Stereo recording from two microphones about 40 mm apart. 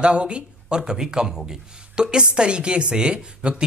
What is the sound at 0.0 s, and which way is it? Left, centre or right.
A woman's voice, right.